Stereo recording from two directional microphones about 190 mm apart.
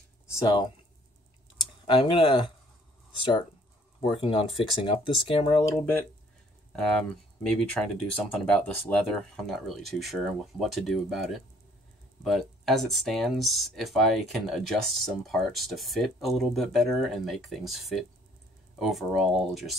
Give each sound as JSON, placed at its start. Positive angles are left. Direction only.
{"t": 0.3, "sound": "speech", "side_deg": 20}
{"t": 1.9, "sound": "speech", "side_deg": 25}
{"t": 4.1, "sound": "speech", "side_deg": 25}
{"t": 6.7, "sound": "speech", "side_deg": 5}